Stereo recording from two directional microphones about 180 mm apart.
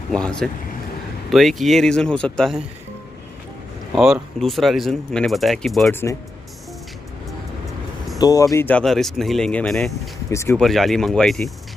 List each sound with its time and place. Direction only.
0.1 s speech: 5° left (ahead or behind)
3.9 s speech: centre (ahead or behind)
5.9 s speech: 10° left (ahead or behind)
8.2 s speech: 20° left (ahead or behind); by 9.9 s 5° left (ahead or behind)
10.3 s speech: 15° left (ahead or behind)
10.6 s speech: centre (ahead or behind)